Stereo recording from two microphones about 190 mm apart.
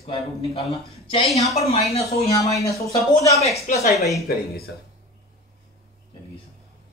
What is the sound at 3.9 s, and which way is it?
Speech, centre (ahead or behind).